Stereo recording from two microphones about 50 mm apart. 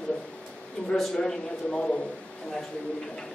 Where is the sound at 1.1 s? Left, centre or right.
Centre.